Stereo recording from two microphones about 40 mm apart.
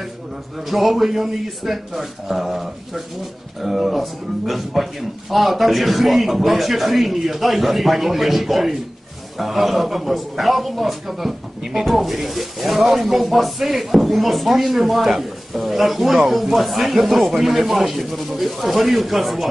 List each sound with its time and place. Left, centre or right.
0.7 s a man's voice: centre